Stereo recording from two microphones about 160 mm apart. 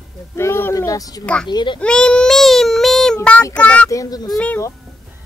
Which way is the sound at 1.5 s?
30° left (ahead or behind).